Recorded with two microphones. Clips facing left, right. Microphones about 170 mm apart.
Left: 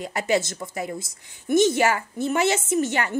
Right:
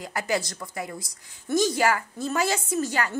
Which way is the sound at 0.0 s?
25° left (ahead or behind).